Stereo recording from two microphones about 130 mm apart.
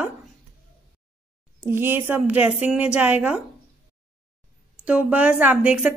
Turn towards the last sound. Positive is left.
turn(degrees=-10)  # may be behind; listen again after turning